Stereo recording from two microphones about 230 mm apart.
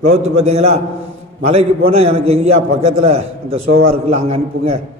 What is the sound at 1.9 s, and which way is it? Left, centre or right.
A man's voice, right.